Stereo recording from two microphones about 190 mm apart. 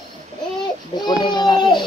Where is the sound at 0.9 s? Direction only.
25° left (ahead or behind).